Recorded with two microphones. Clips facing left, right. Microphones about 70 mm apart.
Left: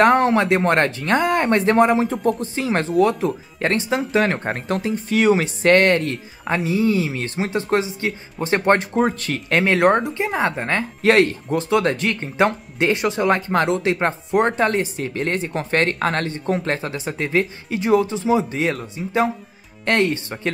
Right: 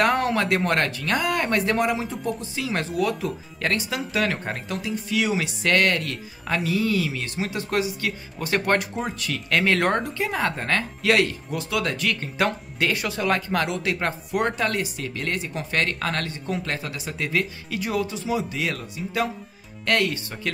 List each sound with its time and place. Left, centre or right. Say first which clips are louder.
0.0 s speech: left 6 dB; left
8.9 s speech: left 9 dB; left; by 10.9 s centre
11.0 s speech: left 7 dB; left